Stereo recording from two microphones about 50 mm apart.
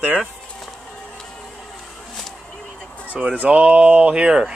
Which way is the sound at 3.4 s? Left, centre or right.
Right.